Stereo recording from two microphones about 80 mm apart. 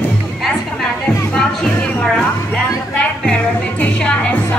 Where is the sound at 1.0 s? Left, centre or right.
Centre.